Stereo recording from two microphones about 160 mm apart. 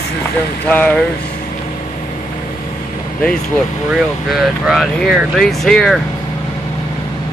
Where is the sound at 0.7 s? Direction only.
10° left (ahead or behind).